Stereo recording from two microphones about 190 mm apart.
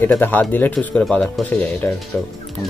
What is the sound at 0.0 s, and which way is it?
Speech, 10° left (ahead or behind).